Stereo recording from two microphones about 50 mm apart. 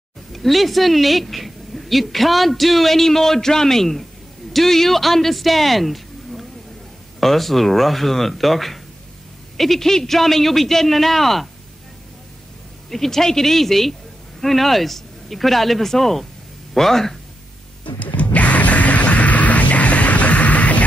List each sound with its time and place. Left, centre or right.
0.3 s a man's voice: centre
12.9 s speech: centre
17.9 s music: left